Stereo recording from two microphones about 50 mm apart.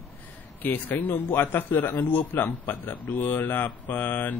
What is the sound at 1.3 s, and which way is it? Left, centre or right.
Speech, left.